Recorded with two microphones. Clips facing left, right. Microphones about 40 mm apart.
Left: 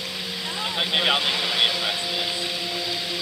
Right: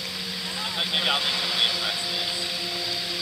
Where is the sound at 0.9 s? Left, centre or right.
Centre.